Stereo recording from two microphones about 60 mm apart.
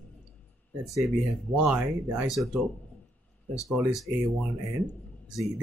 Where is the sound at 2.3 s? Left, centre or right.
Centre.